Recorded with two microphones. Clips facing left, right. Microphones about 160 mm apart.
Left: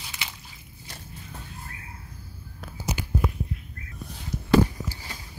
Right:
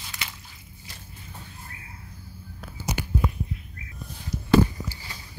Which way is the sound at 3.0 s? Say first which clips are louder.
Right 3 dB; 60° right (ahead or behind).